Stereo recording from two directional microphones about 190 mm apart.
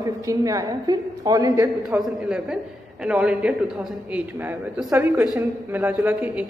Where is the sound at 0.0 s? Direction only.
15° right (ahead or behind).